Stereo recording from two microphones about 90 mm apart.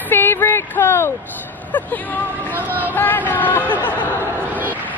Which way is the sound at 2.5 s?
20° right (ahead or behind).